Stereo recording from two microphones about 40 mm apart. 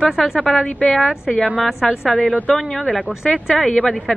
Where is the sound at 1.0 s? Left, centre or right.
Left.